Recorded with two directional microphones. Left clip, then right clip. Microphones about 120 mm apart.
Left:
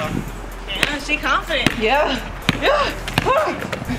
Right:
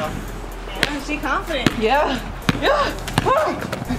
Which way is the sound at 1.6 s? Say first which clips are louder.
Right 2 dB; 5° right (ahead or behind).